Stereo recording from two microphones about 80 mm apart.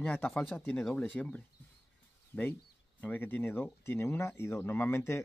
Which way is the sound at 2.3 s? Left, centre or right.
Left.